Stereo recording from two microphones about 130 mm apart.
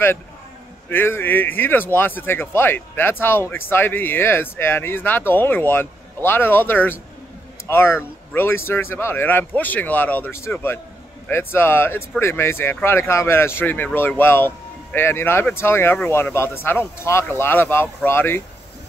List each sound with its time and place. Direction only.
0.8 s speech: 15° left (ahead or behind)